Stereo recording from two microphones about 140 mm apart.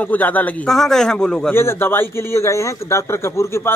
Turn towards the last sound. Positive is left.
turn(degrees=20)  # may be behind; listen again after turning